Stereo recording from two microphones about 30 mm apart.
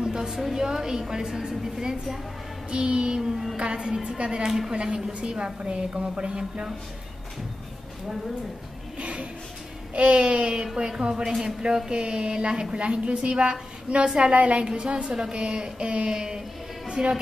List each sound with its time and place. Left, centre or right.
0.0 s a sound: centre
0.6 s a woman's voice: right
2.7 s speech: right
3.2 s music: centre
3.5 s a woman's voice: right
4.5 s music: centre
4.8 s a woman's voice: right
9.0 s a sound: right
9.9 s a woman's voice: right
12.7 s speech: right
14.3 s a woman's voice: right
16.1 s a woman's voice: right
16.8 s a sound: right